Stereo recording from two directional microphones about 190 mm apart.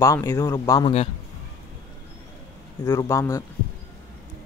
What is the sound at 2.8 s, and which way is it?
Speech, 15° left (ahead or behind).